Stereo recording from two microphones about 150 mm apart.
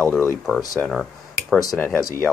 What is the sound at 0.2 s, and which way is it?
Speech, 20° left (ahead or behind).